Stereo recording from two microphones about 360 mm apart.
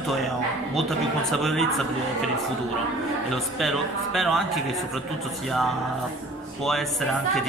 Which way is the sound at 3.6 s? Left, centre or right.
Centre.